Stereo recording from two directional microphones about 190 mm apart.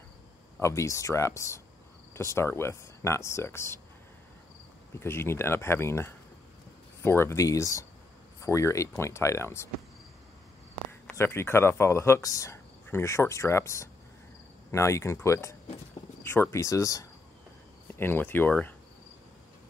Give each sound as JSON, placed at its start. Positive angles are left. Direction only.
{"t": 0.6, "sound": "speech", "side_deg": 15}
{"t": 4.9, "sound": "speech", "side_deg": 15}
{"t": 10.9, "sound": "speech", "side_deg": 10}